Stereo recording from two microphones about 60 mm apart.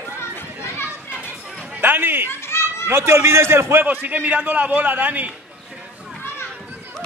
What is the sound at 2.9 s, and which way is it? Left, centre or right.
Speech, right.